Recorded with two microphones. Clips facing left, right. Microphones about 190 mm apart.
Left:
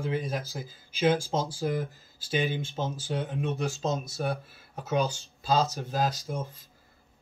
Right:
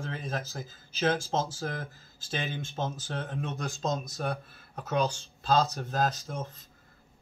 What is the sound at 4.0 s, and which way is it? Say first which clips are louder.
Speech: left 2 dB; 5° left (ahead or behind).